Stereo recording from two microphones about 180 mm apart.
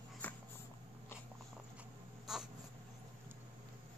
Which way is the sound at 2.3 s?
Centre (ahead or behind).